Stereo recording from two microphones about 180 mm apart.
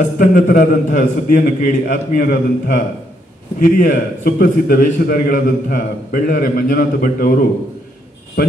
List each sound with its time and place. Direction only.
0.0 s a man's voice: 50° left (ahead or behind)